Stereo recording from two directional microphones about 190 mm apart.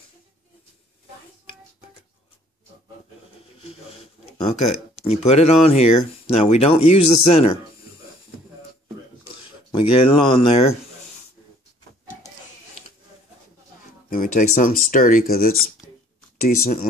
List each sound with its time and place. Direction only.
4.4 s speech: 35° left (ahead or behind)
9.3 s speech: 30° left (ahead or behind)
14.0 s speech: 45° left (ahead or behind)